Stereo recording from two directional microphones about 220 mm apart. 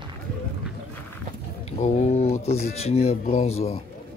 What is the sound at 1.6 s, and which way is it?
Speech, 30° left (ahead or behind).